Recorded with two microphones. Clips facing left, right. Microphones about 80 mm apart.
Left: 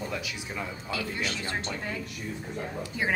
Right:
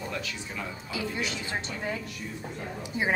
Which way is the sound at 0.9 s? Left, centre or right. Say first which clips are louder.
Even; right.